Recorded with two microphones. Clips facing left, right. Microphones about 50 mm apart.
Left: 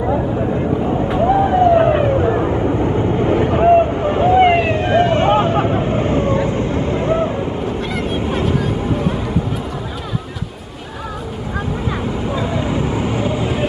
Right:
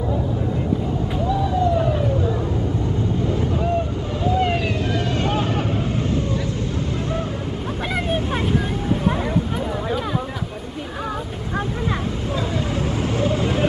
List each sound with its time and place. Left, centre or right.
1.1 s vehicle: left
2.8 s vehicle: left
7.9 s vehicle: centre
12.3 s vehicle: centre